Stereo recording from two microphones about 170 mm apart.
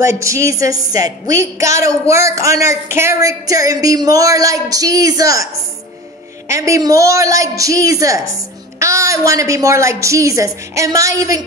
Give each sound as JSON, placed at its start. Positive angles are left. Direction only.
{"t": 0.0, "sound": "a woman's voice", "side_deg": -15}
{"t": 6.5, "sound": "a woman's voice", "side_deg": -20}